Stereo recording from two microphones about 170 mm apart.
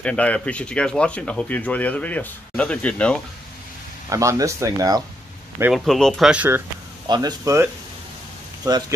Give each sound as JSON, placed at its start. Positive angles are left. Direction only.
{"t": 0.0, "sound": "speech", "side_deg": 5}
{"t": 4.1, "sound": "speech", "side_deg": -20}
{"t": 5.6, "sound": "speech", "side_deg": 0}
{"t": 7.1, "sound": "speech", "side_deg": -25}